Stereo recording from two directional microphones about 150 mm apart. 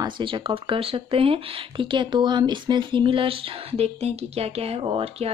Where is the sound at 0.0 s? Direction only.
35° right (ahead or behind).